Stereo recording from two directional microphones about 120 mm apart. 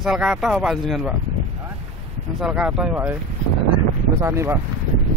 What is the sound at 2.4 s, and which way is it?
Speech, 10° right (ahead or behind).